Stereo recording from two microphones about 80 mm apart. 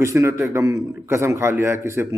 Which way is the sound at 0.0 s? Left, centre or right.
Right.